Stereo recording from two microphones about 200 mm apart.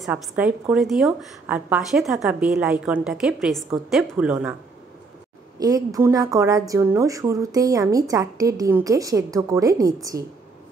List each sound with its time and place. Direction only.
0.0 s a woman's voice: 5° right (ahead or behind)
5.6 s a woman's voice: 20° right (ahead or behind)